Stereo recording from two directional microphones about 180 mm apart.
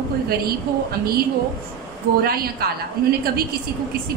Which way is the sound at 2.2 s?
55° right (ahead or behind).